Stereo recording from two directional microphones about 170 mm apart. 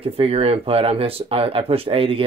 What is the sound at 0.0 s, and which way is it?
Speech, 35° right (ahead or behind).